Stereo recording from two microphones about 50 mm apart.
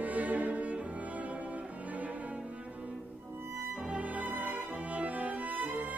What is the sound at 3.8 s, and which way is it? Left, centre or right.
Music, right.